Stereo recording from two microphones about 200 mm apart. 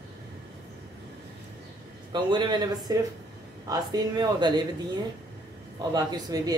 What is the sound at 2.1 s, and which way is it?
Speech, 20° right (ahead or behind).